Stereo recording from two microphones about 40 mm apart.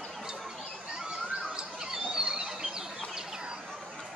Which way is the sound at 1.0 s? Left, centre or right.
Centre.